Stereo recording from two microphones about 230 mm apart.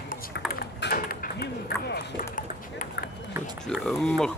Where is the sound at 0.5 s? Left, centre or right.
Left.